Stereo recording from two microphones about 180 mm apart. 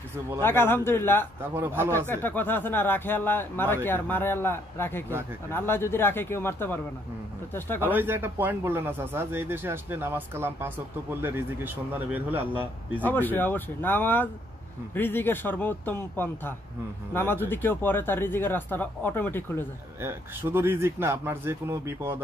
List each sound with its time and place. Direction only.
0.4 s speech: 10° left (ahead or behind)
1.4 s speech: 10° right (ahead or behind)
2.0 s speech: 10° left (ahead or behind)
7.8 s speech: 10° right (ahead or behind)
13.0 s speech: 10° left (ahead or behind)
20.0 s speech: 15° right (ahead or behind)